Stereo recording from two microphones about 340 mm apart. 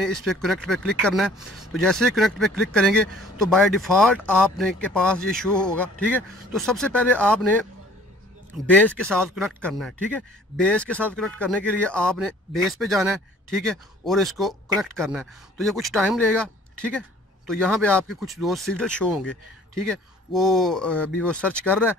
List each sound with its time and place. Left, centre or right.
0.0 s speech: centre
8.7 s speech: centre
17.5 s speech: centre